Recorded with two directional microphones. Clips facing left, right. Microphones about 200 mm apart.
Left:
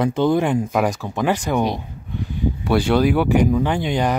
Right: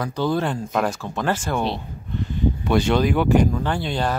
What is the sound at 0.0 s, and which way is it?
Speech, 20° left (ahead or behind).